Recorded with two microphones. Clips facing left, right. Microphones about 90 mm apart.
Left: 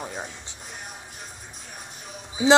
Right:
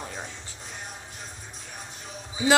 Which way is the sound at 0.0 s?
15° left (ahead or behind).